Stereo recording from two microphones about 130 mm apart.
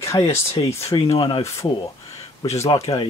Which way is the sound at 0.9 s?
50° left (ahead or behind).